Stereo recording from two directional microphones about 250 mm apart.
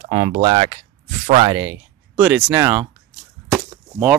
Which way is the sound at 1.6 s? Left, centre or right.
Centre.